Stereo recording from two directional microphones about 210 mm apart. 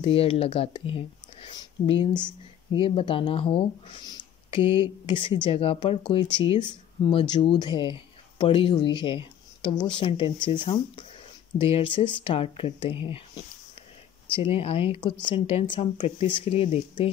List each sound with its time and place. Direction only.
0.0 s speech: 25° left (ahead or behind)